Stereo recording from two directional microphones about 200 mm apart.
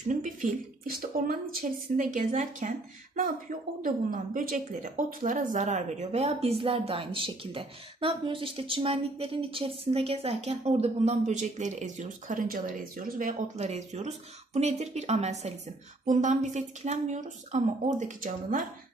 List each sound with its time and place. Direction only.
0.1 s speech: 40° right (ahead or behind)
3.8 s speech: 40° right (ahead or behind)